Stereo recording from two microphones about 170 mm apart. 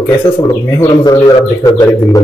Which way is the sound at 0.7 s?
20° left (ahead or behind).